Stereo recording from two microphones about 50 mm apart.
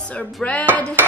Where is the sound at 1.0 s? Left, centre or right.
Right.